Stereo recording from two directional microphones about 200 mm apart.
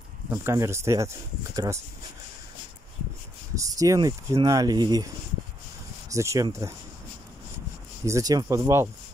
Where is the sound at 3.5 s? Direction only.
15° right (ahead or behind).